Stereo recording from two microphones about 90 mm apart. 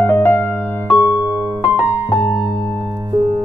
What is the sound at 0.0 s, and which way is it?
Music, 25° left (ahead or behind).